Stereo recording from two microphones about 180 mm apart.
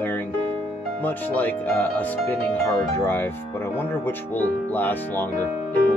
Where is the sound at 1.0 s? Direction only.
10° left (ahead or behind).